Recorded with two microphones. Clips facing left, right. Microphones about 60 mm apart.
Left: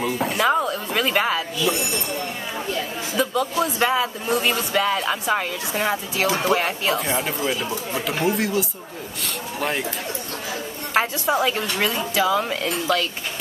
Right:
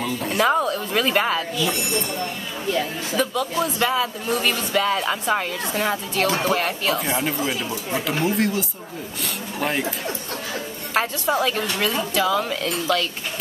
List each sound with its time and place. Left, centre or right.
0.3 s a sound: centre
0.7 s speech: centre
3.2 s speech: left
4.7 s speech: centre
6.6 s speech: centre
7.0 s speech: centre
11.0 s speech: centre